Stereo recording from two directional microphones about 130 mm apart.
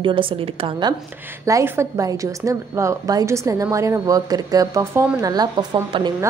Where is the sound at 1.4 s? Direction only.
20° right (ahead or behind).